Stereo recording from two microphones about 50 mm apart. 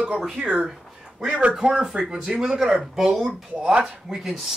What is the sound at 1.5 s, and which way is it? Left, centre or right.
Speech, centre.